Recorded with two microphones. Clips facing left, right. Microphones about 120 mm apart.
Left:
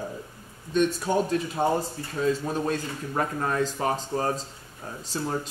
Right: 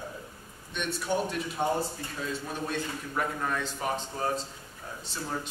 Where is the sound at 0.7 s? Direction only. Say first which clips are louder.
Left 7 dB; 40° left (ahead or behind).